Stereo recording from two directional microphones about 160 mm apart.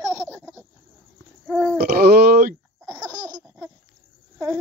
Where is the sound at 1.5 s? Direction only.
5° left (ahead or behind).